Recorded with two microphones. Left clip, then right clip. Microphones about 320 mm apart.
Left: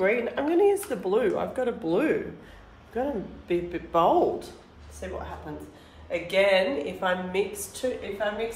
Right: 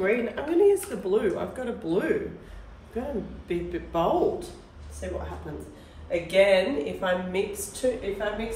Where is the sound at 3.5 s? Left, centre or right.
Centre.